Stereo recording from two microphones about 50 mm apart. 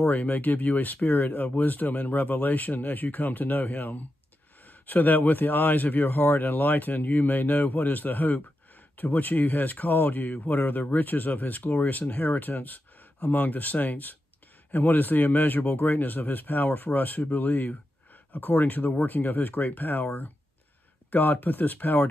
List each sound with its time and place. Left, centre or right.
0.1 s speech: left
21.1 s speech: left